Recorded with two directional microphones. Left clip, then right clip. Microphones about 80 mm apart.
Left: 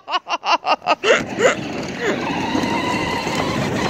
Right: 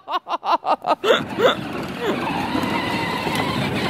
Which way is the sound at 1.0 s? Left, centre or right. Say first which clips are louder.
Left 1 dB; right.